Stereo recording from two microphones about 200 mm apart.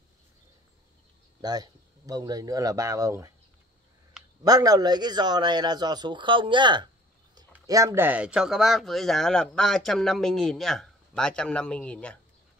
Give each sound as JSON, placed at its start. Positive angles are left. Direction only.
{"t": 1.4, "sound": "speech", "side_deg": -20}
{"t": 4.2, "sound": "a sound", "side_deg": -5}
{"t": 4.5, "sound": "speech", "side_deg": -20}